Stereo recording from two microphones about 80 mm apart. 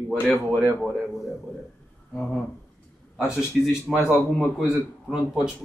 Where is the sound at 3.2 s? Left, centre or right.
Centre.